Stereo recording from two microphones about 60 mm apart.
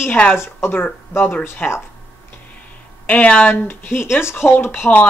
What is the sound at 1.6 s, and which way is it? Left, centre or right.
Speech, left.